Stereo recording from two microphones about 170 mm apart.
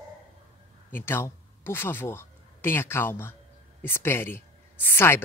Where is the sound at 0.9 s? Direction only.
15° left (ahead or behind).